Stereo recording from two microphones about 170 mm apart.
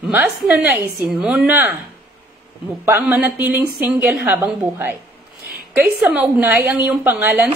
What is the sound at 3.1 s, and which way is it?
A woman's voice, 15° right (ahead or behind).